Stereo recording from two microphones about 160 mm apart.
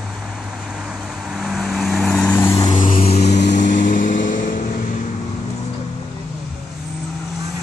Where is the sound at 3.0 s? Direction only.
40° left (ahead or behind).